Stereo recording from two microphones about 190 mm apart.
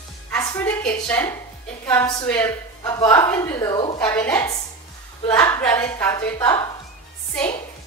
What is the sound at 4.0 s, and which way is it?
A woman's voice, 10° left (ahead or behind).